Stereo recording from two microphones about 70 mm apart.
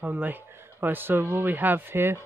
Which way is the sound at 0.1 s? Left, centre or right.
Right.